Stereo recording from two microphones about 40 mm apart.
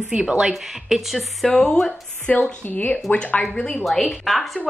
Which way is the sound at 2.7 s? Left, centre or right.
Left.